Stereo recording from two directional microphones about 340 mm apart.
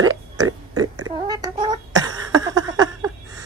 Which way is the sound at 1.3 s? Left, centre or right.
Centre.